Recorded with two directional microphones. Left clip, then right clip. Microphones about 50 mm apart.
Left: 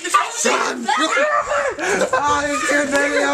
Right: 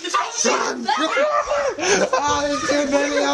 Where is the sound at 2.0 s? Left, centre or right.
Right.